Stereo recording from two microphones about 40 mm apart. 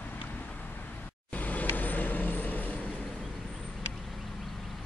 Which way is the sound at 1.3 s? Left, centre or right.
Left.